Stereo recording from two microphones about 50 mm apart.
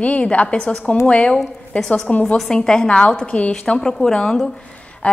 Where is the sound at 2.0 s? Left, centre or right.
Left.